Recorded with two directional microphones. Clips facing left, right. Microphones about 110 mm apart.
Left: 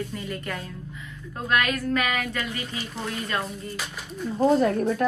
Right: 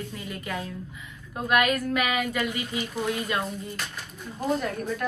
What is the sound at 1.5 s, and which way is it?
Speech, 10° right (ahead or behind).